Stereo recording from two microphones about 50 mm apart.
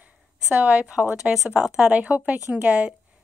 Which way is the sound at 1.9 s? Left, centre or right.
Right.